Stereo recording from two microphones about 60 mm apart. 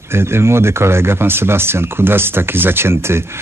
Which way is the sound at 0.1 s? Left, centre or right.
Right.